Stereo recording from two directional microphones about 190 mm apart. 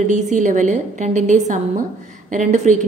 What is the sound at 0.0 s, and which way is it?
A woman's voice, 40° right (ahead or behind).